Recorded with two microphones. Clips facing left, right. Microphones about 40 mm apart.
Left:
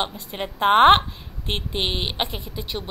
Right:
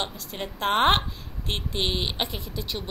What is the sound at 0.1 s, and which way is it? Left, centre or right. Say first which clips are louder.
A woman's voice: left 4 dB; centre.